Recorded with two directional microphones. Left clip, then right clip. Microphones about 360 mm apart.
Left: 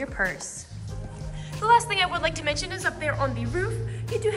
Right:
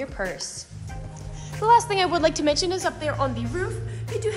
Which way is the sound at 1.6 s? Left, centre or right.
Centre.